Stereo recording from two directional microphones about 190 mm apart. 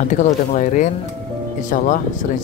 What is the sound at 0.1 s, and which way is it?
Speech, 40° left (ahead or behind).